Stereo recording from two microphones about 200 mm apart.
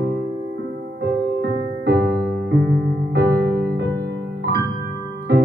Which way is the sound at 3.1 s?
55° right (ahead or behind).